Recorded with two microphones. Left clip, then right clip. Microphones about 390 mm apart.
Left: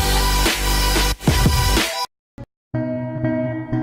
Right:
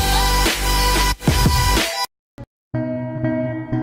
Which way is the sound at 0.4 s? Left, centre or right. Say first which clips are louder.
Right 1 dB; centre.